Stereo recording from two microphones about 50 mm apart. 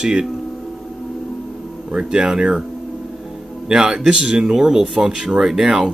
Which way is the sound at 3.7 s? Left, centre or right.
Centre.